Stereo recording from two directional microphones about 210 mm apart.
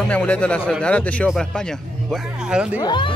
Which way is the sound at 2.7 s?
20° left (ahead or behind).